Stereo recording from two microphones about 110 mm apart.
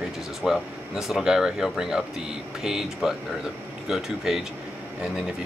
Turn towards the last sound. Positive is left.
turn(degrees=-5)  # may be behind; listen again after turning